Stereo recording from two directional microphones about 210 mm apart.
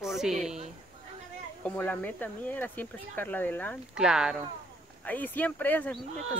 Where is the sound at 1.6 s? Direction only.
5° left (ahead or behind).